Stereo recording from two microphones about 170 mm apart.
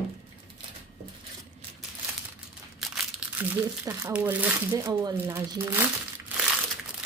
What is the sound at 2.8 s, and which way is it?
Crumpling, 5° right (ahead or behind).